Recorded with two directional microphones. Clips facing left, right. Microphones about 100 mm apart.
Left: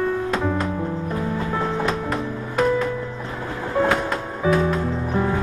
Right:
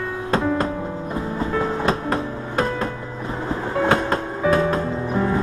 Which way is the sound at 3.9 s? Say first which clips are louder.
Right 3 dB; 40° right (ahead or behind).